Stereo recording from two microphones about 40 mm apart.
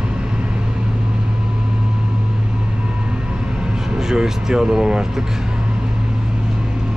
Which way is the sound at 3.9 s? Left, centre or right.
Centre.